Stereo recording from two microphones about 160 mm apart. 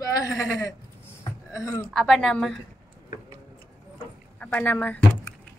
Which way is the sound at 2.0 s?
Centre (ahead or behind).